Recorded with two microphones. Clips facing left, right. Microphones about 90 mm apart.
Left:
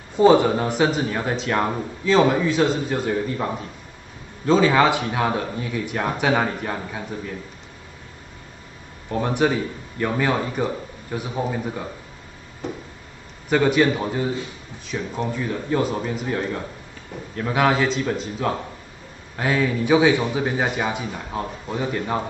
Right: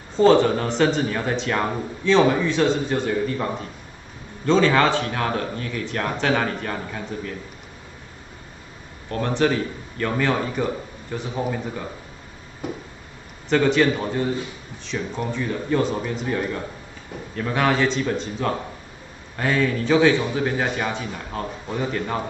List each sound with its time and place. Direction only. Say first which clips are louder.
0.1 s a man's voice: left 1 dB; 10° left (ahead or behind)
9.1 s speech: even; 10° left (ahead or behind)
13.5 s a man's voice: even; 10° left (ahead or behind)
17.4 s a man's voice: left 1 dB; 5° left (ahead or behind)